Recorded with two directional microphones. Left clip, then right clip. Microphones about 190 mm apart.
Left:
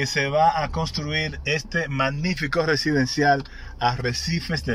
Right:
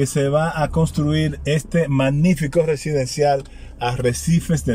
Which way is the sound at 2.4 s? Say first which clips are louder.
Right 1 dB; 25° right (ahead or behind).